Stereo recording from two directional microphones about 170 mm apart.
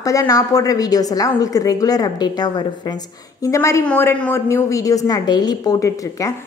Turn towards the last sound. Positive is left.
turn(degrees=20)  # may be behind; listen again after turning